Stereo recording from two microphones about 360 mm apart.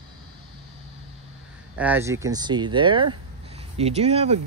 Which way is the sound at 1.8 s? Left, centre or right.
Centre.